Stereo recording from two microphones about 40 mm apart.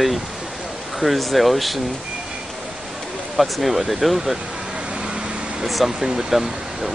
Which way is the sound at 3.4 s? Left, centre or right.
Centre.